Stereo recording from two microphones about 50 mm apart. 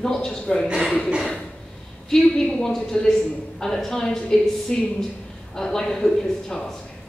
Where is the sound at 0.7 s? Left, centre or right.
Centre.